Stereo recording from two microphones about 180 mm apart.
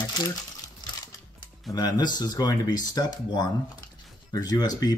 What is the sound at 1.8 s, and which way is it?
Speech, 25° left (ahead or behind).